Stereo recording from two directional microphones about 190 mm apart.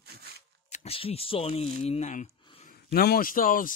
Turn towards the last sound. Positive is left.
turn(degrees=45)  # may be behind; listen again after turning